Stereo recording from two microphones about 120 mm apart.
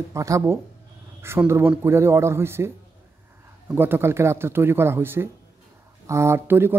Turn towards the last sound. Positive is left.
turn(degrees=-20)  # may be behind; listen again after turning